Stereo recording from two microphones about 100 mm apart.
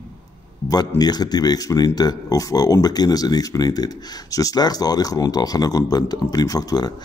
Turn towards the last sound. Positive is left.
turn(degrees=40)  # may be behind; listen again after turning